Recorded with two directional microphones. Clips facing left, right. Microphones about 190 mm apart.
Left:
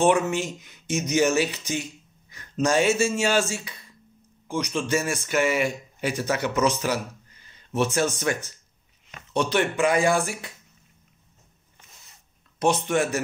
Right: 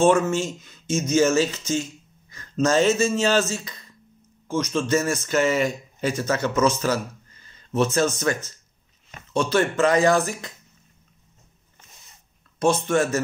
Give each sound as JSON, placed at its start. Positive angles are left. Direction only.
{"t": 0.0, "sound": "speech", "side_deg": 15}
{"t": 12.5, "sound": "speech", "side_deg": 15}